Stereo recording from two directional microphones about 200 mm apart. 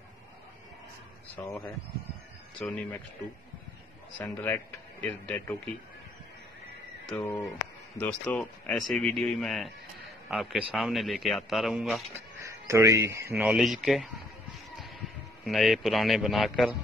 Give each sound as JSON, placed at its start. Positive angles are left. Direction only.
{"t": 1.3, "sound": "speech", "side_deg": 15}
{"t": 2.6, "sound": "speech", "side_deg": 10}
{"t": 4.2, "sound": "speech", "side_deg": 10}
{"t": 7.1, "sound": "speech", "side_deg": 10}
{"t": 12.4, "sound": "speech", "side_deg": -15}
{"t": 15.4, "sound": "speech", "side_deg": 0}